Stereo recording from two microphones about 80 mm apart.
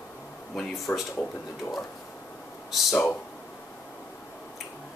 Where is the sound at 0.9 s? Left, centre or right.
Centre.